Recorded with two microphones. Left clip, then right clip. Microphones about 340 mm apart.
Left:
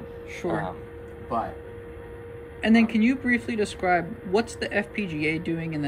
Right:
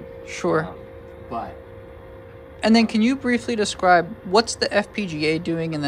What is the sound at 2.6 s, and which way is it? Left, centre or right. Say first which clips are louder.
Speech: right 3 dB; centre.